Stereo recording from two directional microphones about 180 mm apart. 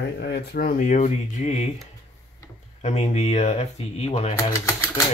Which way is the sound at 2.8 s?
40° left (ahead or behind).